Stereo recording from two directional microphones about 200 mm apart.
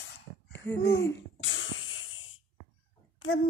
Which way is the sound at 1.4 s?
75° left (ahead or behind).